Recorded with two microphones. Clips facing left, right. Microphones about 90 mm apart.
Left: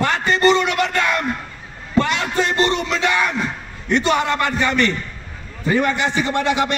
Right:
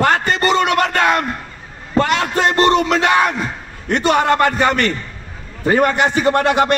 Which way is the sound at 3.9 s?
55° right (ahead or behind).